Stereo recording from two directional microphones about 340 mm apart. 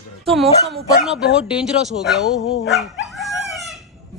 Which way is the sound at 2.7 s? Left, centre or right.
Centre.